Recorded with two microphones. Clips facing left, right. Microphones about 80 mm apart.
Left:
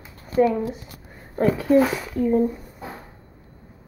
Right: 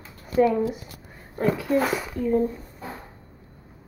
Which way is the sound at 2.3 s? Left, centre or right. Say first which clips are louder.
Left 2 dB; centre.